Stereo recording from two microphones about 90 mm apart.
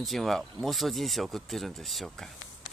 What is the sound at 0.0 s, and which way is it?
Speech, centre (ahead or behind).